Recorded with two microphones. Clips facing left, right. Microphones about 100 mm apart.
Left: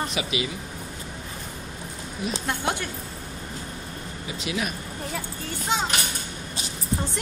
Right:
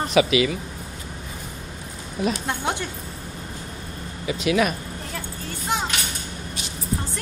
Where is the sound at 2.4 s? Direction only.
20° right (ahead or behind).